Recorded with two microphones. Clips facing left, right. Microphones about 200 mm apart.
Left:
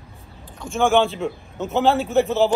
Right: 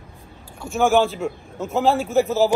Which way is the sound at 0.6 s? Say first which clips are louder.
Even; centre (ahead or behind).